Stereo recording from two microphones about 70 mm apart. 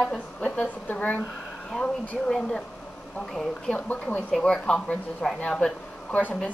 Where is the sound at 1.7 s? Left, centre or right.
Centre.